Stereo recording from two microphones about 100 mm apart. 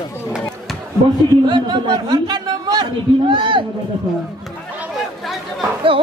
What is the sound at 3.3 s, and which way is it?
Speech, 55° right (ahead or behind).